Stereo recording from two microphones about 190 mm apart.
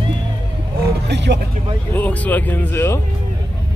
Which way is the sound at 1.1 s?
65° right (ahead or behind).